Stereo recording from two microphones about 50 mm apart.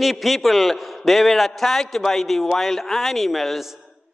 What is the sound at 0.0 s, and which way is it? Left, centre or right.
A man's voice, centre.